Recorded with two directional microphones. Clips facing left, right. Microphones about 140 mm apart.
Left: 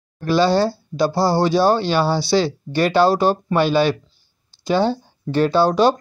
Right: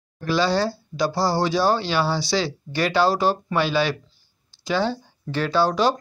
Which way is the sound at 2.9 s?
55° left (ahead or behind).